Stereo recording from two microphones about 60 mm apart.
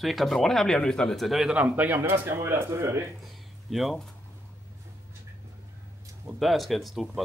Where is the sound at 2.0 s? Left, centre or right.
Right.